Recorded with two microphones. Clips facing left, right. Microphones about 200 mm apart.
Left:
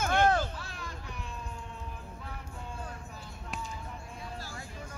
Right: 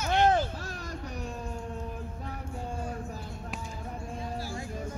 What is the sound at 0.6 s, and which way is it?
Music, 40° right (ahead or behind).